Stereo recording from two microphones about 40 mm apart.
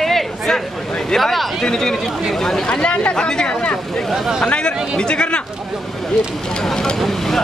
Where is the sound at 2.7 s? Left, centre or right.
Left.